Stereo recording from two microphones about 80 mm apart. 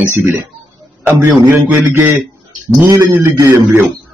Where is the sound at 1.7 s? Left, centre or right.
Right.